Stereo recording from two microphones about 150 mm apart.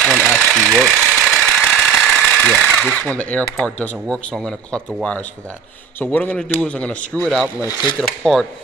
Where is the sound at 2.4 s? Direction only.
10° left (ahead or behind).